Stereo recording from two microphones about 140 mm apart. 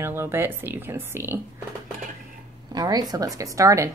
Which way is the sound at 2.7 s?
30° right (ahead or behind).